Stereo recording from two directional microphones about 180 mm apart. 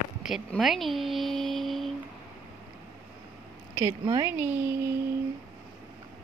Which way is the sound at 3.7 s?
20° right (ahead or behind).